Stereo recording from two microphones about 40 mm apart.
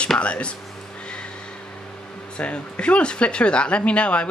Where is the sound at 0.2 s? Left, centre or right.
Left.